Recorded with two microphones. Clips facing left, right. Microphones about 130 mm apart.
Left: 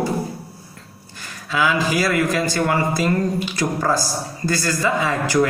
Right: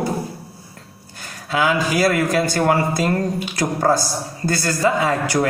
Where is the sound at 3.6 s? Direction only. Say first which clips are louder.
Right 1 dB; 45° right (ahead or behind).